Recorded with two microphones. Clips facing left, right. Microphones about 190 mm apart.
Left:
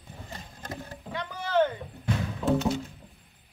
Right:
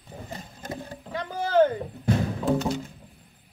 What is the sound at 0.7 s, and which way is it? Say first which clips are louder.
Music: right 3 dB; 35° right (ahead or behind).